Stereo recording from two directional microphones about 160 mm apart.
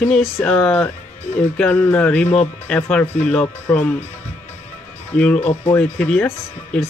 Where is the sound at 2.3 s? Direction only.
45° left (ahead or behind).